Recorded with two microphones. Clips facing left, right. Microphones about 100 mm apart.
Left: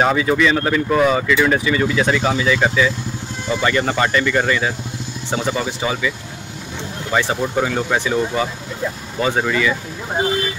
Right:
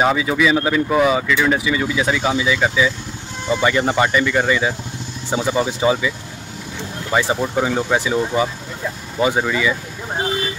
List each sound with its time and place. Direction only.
0.0 s speech: 5° right (ahead or behind)
5.6 s speech: 20° right (ahead or behind)